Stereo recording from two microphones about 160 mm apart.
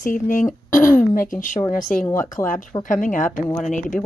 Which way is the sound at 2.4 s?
15° left (ahead or behind).